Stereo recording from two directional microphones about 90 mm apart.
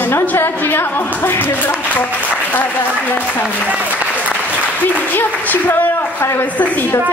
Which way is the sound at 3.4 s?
15° right (ahead or behind).